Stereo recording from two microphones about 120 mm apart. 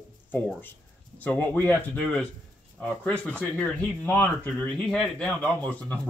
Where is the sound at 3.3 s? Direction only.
15° left (ahead or behind).